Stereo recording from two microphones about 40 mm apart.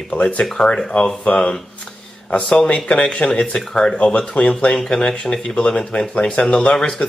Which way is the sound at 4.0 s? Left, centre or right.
Left.